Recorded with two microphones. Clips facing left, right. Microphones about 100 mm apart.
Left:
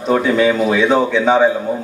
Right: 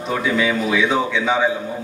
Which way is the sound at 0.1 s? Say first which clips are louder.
Left 6 dB; 45° left (ahead or behind).